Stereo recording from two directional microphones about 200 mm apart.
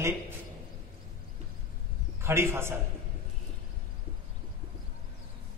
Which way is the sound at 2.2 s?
15° right (ahead or behind).